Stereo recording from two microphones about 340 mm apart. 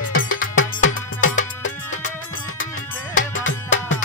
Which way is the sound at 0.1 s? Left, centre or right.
Left.